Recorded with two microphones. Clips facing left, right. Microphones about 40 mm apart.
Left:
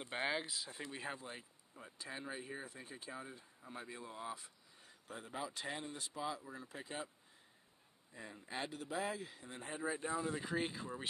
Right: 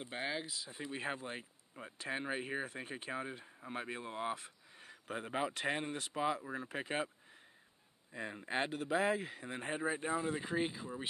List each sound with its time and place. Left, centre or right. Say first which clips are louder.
0.0 s speech: left 1 dB; centre
1.0 s speech: right 5 dB; right
2.0 s speech: right 7 dB; right
8.1 s speech: right 8 dB; right; by 10.8 s centre
10.8 s speech: right 2 dB; centre